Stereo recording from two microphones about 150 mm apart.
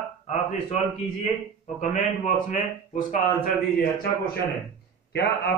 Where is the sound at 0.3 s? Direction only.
55° left (ahead or behind).